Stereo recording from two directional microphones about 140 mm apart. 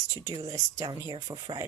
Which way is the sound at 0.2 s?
25° right (ahead or behind).